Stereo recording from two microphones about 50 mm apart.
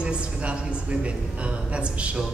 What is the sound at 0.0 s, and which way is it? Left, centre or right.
A man's voice, right.